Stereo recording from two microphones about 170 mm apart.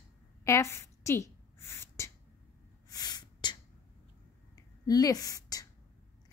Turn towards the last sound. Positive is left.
turn(degrees=20)  # may be behind; listen again after turning